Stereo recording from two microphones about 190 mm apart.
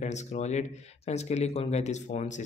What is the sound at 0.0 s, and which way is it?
Speech, 40° left (ahead or behind).